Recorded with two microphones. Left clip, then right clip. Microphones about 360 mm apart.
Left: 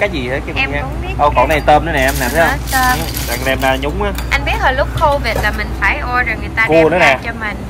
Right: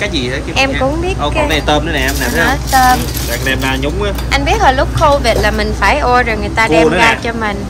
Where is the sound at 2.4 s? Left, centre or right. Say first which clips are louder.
Right 4 dB; centre.